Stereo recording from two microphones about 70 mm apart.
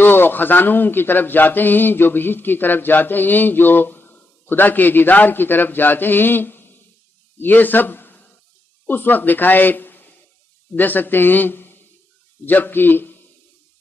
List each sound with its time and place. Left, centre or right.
0.0 s a man's voice: left